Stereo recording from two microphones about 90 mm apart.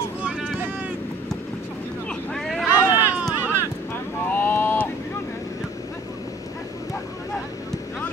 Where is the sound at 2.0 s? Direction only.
5° left (ahead or behind).